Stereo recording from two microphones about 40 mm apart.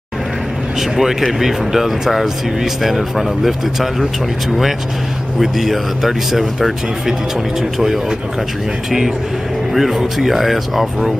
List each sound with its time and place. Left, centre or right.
0.7 s speech: centre
5.4 s speech: centre
9.7 s speech: centre